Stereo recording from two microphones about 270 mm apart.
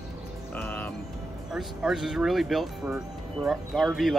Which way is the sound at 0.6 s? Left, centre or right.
Centre.